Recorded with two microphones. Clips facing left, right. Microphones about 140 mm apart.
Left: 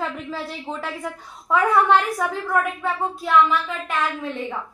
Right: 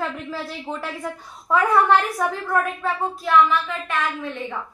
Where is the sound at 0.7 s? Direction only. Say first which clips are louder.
Right 1 dB; 5° right (ahead or behind).